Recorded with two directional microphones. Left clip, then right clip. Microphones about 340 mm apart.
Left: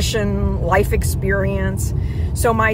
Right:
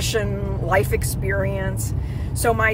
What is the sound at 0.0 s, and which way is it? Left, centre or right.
Speech, centre.